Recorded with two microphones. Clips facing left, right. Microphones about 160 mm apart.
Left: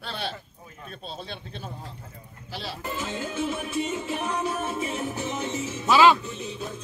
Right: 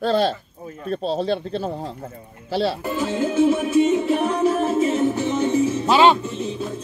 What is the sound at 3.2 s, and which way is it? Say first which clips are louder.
Music: right 14 dB; 50° right (ahead or behind).